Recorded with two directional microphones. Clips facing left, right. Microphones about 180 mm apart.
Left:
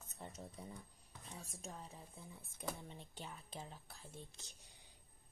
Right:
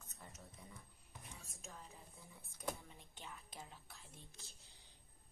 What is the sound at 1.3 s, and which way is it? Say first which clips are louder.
Speech: left 7 dB; 35° left (ahead or behind).